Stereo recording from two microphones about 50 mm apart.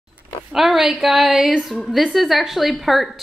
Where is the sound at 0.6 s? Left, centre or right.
Centre.